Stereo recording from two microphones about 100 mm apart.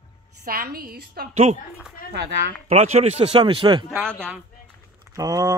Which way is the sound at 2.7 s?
90° right.